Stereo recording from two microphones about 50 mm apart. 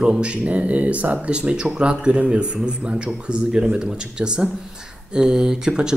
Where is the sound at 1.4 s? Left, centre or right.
Centre.